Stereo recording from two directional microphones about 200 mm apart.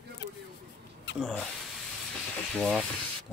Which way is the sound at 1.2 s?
Centre (ahead or behind).